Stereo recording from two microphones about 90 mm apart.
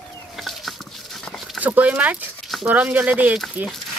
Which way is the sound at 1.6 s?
15° right (ahead or behind).